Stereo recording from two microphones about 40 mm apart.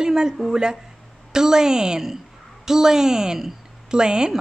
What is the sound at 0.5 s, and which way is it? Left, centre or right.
A woman's voice, centre.